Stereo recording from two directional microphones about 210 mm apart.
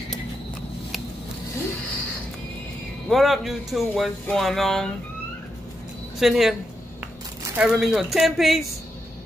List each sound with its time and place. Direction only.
3.1 s speech: centre (ahead or behind)
6.1 s speech: centre (ahead or behind)
7.5 s speech: 5° right (ahead or behind)